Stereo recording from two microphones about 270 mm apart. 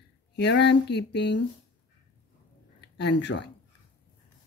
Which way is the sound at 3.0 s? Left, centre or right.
Left.